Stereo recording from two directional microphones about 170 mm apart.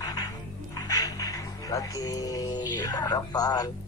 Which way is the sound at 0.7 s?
20° left (ahead or behind).